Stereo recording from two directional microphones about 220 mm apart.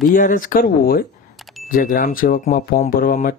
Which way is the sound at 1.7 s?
40° left (ahead or behind).